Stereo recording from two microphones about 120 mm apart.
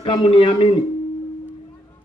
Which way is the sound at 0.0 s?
40° left (ahead or behind).